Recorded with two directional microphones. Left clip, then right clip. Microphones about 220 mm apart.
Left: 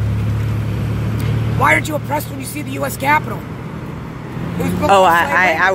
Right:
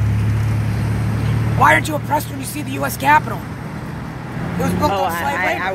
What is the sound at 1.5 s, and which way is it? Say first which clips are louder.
Speech: right 1 dB; centre (ahead or behind).